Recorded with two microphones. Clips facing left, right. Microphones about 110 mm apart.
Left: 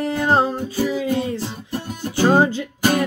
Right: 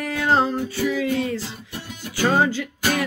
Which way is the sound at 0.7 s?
40° left (ahead or behind).